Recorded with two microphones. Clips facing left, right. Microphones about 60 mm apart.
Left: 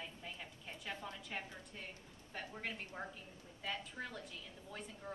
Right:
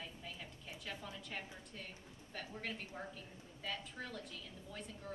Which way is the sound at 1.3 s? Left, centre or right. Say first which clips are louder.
Left 1 dB; left.